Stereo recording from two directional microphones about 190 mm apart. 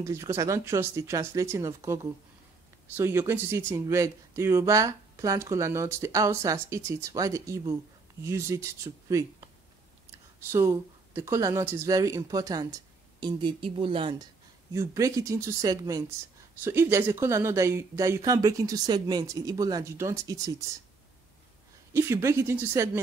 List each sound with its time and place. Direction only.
0.0 s speech: 15° right (ahead or behind)
3.0 s speech: 15° right (ahead or behind)
10.5 s speech: 15° right (ahead or behind)
14.7 s speech: 15° right (ahead or behind)
21.9 s speech: 15° right (ahead or behind)